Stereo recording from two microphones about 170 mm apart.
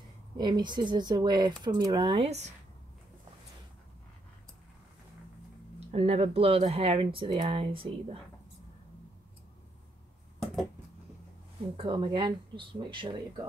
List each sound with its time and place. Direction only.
0.4 s speech: 25° right (ahead or behind)
2.2 s speech: 40° right (ahead or behind)
5.8 s speech: 35° right (ahead or behind)
11.7 s speech: 30° right (ahead or behind)